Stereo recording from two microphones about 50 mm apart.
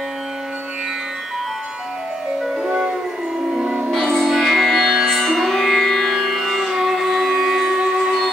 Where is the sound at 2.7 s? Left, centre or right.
Centre.